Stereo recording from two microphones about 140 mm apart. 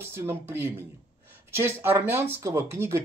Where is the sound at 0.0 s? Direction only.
20° right (ahead or behind).